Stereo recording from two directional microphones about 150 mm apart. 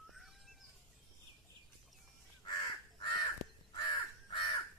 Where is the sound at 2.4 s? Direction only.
30° left (ahead or behind).